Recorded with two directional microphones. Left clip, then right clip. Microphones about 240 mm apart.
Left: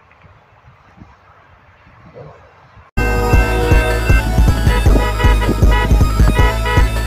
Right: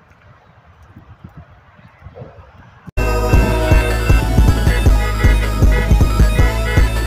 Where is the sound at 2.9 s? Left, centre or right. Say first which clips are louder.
Left 2 dB; centre.